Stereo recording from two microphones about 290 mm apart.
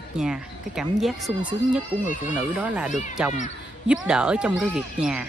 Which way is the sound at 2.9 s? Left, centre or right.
Left.